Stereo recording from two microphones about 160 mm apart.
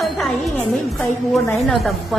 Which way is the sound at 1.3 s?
Centre (ahead or behind).